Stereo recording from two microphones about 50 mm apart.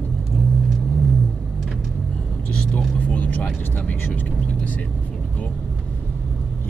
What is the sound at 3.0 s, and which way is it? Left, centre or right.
Vehicle, left.